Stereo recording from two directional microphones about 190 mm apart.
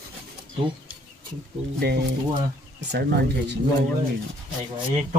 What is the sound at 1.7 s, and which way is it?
Speech, 60° right (ahead or behind).